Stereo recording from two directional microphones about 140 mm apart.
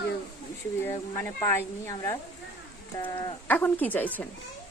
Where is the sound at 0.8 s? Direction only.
20° left (ahead or behind).